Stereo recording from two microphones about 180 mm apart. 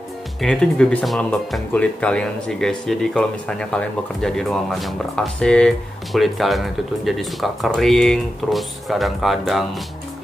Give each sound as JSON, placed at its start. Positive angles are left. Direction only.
{"t": 0.4, "sound": "speech", "side_deg": 5}